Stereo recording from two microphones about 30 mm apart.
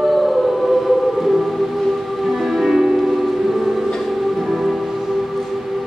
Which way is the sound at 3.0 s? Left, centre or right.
Centre.